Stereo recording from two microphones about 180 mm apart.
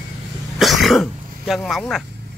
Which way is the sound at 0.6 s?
Centre (ahead or behind).